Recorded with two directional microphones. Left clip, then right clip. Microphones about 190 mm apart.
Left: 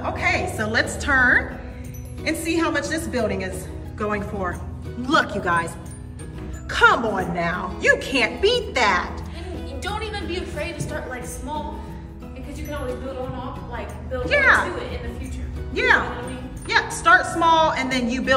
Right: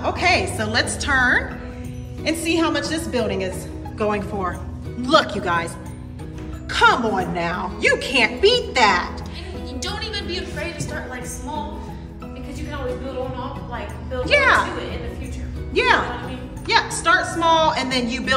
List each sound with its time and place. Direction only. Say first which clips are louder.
0.0 s music: right 4 dB; 15° right (ahead or behind)
0.6 s a woman's voice: right 1 dB; centre (ahead or behind)
5.0 s a woman's voice: right 3 dB; centre (ahead or behind)
6.7 s a woman's voice: right 1 dB; centre (ahead or behind)
9.8 s music: right 1 dB; 45° left (ahead or behind)
13.7 s a woman's voice: right 1 dB; 5° right (ahead or behind)
15.7 s a woman's voice: right 1 dB; 10° right (ahead or behind)